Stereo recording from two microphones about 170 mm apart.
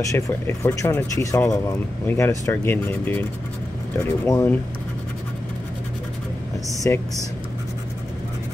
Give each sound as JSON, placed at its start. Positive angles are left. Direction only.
{"t": 0.0, "sound": "speech", "side_deg": 20}
{"t": 6.8, "sound": "speech", "side_deg": 15}